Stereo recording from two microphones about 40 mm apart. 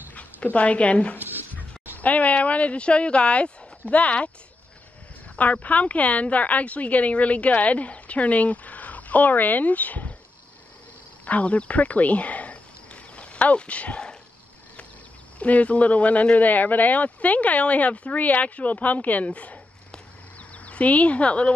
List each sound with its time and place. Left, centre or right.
0.1 s speech: left
5.4 s speech: left
11.2 s speech: left
15.3 s speech: left
19.9 s a sound: left